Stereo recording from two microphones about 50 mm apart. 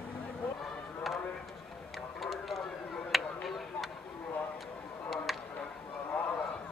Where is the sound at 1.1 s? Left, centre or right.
Centre.